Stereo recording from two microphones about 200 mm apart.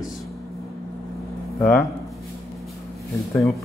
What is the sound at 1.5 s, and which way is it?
Speech, 5° left (ahead or behind).